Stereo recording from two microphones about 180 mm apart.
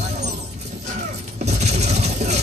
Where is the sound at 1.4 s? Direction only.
40° right (ahead or behind).